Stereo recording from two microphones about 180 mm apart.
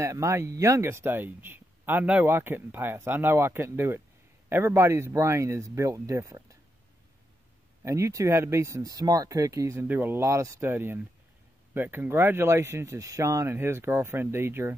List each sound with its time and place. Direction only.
0.0 s speech: 15° right (ahead or behind)
7.8 s speech: 15° right (ahead or behind)